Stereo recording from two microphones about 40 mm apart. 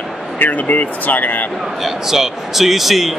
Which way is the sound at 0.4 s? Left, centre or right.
Left.